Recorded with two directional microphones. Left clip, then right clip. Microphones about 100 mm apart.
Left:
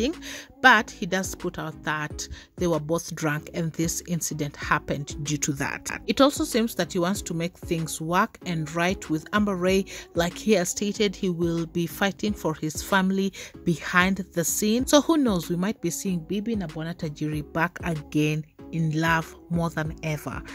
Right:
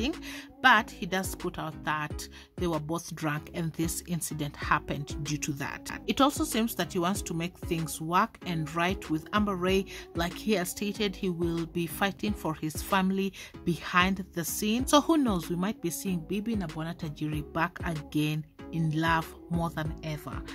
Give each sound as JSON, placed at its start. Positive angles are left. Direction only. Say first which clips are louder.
{"t": 0.3, "sound": "speech", "louder": "left 5 dB", "side_deg": 40}
{"t": 6.0, "sound": "speech", "louder": "left 5 dB", "side_deg": 30}
{"t": 16.8, "sound": "speech", "louder": "left 5 dB", "side_deg": 35}
{"t": 20.0, "sound": "speech", "louder": "left 7 dB", "side_deg": 50}